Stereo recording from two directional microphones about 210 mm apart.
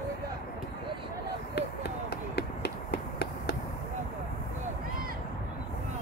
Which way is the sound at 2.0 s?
50° left (ahead or behind).